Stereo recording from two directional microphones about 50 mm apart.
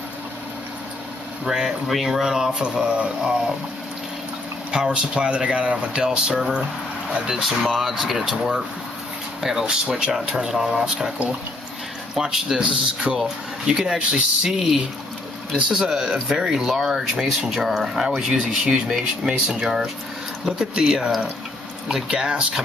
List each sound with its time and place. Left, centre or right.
1.4 s speech: centre
2.6 s speech: centre
4.6 s speech: right
7.2 s speech: centre
9.7 s speech: centre
12.2 s speech: centre
12.6 s speech: right
15.7 s speech: centre
22.2 s speech: right